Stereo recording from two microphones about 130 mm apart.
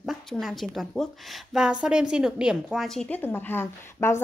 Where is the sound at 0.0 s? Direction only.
Centre (ahead or behind).